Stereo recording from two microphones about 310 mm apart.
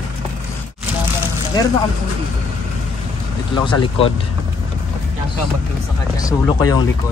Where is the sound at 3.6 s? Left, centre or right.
Centre.